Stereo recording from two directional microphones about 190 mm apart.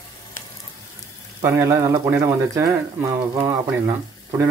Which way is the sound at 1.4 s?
15° right (ahead or behind).